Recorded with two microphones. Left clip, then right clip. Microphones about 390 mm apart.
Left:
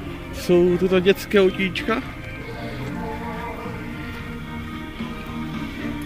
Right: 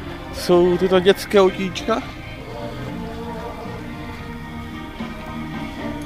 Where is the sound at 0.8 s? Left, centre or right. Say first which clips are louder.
Right 3 dB; centre.